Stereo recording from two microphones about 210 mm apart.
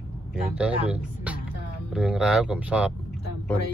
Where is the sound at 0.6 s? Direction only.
5° right (ahead or behind).